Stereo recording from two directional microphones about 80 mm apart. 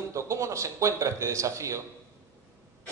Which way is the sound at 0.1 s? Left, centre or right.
Right.